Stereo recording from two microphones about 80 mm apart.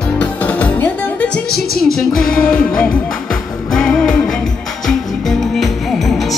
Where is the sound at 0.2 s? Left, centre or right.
Centre.